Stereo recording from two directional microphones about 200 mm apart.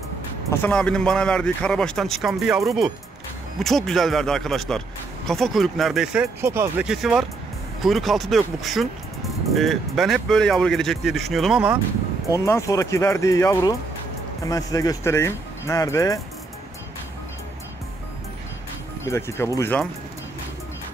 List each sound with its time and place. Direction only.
0.5 s speech: 10° left (ahead or behind)
6.4 s speech: 10° right (ahead or behind)
12.3 s speech: 15° left (ahead or behind)
19.0 s speech: 15° left (ahead or behind)